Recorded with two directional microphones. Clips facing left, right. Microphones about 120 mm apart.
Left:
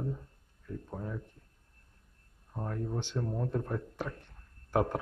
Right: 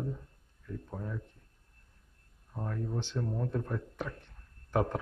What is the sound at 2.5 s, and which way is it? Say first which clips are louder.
A man's voice: left 1 dB; 15° left (ahead or behind).